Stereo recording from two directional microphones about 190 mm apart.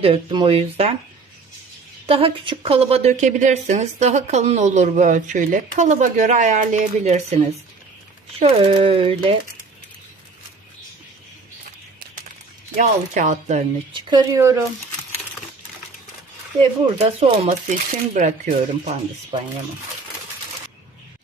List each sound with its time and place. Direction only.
0.0 s speech: 25° right (ahead or behind)
2.0 s speech: 30° right (ahead or behind)
12.7 s speech: 40° right (ahead or behind)
13.9 s speech: 25° right (ahead or behind)
17.0 s speech: 35° right (ahead or behind)
19.3 s speech: 30° right (ahead or behind)